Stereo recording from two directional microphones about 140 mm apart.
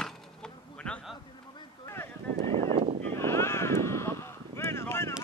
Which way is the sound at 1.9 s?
20° left (ahead or behind).